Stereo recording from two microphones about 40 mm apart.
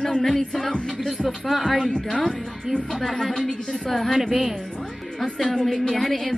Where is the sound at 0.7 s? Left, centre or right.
Centre.